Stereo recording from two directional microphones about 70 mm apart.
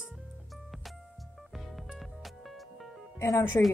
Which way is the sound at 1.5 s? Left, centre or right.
Centre.